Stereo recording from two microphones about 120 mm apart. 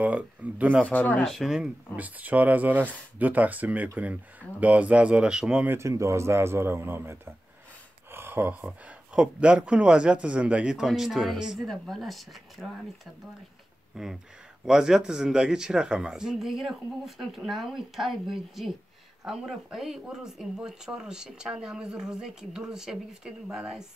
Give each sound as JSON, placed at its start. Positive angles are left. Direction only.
{"t": 0.0, "sound": "speech", "side_deg": -10}
{"t": 0.8, "sound": "speech", "side_deg": 10}
{"t": 5.7, "sound": "speech", "side_deg": -25}